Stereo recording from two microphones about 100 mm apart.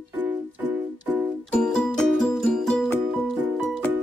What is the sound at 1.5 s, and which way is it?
Music, 5° left (ahead or behind).